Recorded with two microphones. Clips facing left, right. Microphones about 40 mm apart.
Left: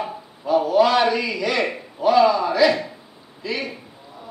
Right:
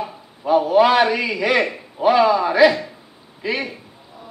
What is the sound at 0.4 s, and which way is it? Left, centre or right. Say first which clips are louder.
Speech: right 2 dB; centre.